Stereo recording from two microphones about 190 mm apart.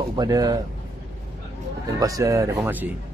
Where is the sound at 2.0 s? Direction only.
15° right (ahead or behind).